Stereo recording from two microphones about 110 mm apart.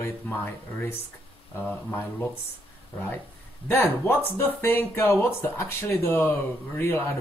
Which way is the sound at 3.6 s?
20° left (ahead or behind).